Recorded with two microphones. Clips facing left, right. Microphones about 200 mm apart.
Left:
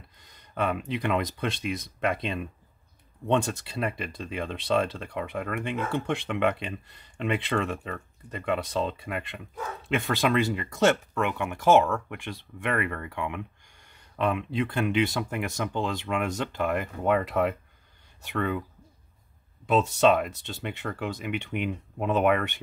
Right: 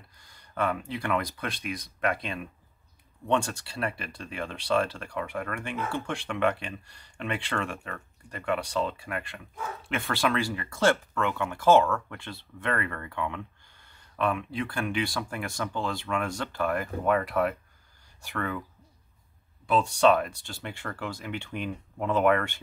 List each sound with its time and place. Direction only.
0.2 s speech: 20° left (ahead or behind)
19.7 s speech: 20° left (ahead or behind)